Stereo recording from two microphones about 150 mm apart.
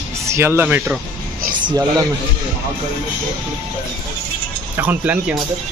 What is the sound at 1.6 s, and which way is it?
Speech, 25° right (ahead or behind).